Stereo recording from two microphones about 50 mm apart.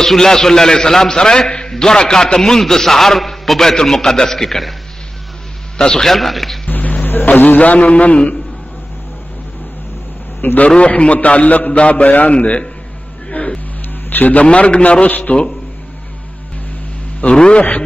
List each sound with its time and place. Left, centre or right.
0.0 s a man's voice: centre
5.8 s a man's voice: centre
6.7 s a man's voice: left
10.4 s a man's voice: left
10.8 s a man's voice: left
13.4 s a sound: left
14.1 s a man's voice: left
14.4 s a man's voice: left
17.2 s a man's voice: left